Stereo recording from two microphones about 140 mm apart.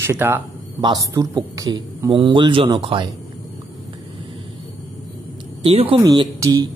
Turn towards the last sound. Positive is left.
turn(degrees=-25)  # may be behind; listen again after turning